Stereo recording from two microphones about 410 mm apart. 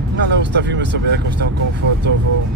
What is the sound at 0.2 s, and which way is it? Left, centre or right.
Speech, right.